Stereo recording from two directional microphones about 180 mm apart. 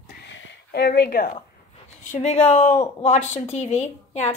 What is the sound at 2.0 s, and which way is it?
A woman's voice, 40° left (ahead or behind).